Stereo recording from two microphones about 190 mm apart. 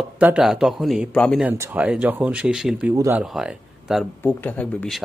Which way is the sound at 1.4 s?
10° right (ahead or behind).